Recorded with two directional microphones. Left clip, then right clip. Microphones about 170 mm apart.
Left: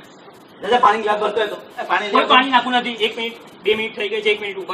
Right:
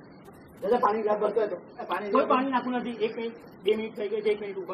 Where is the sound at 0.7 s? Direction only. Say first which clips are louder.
Left 10 dB; 35° left (ahead or behind).